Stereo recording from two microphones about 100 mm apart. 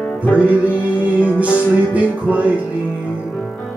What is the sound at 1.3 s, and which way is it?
Music, 15° right (ahead or behind).